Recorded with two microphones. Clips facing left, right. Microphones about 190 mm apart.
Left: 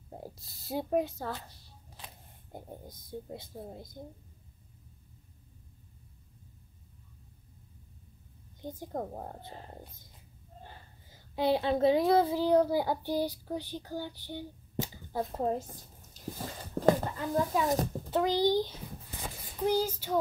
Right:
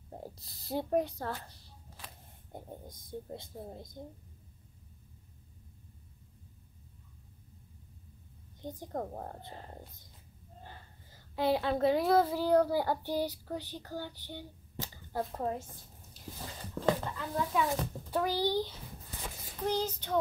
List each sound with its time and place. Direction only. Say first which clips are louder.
0.1 s speech: left 1 dB; 5° left (ahead or behind)
1.9 s a sound: left 2 dB; 15° left (ahead or behind)
2.5 s a woman's voice: left 1 dB; 5° left (ahead or behind)
8.6 s a woman's voice: left 1 dB; 5° left (ahead or behind)
11.1 s a woman's voice: left 2 dB; 15° left (ahead or behind)
15.4 s a woman's voice: left 4 dB; 35° left (ahead or behind)
16.3 s a sound: left 3 dB; 45° left (ahead or behind)
17.6 s a woman's voice: left 1 dB; 40° left (ahead or behind)
18.1 s a woman's voice: left 4 dB; 20° left (ahead or behind)